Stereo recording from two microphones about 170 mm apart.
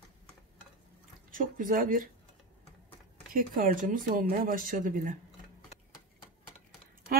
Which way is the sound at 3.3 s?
55° right (ahead or behind).